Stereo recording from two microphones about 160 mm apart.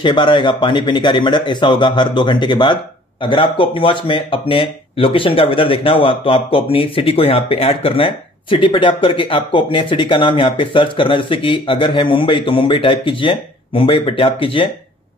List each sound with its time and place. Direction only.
0.0 s speech: 30° left (ahead or behind)